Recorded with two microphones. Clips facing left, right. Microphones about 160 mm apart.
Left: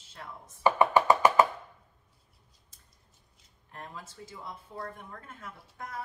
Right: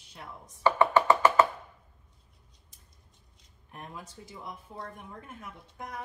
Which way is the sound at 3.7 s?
15° right (ahead or behind).